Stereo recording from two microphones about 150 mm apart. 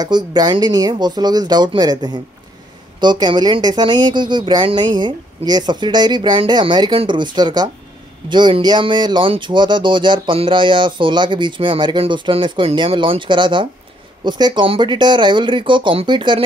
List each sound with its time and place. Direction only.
0.0 s speech: 25° right (ahead or behind)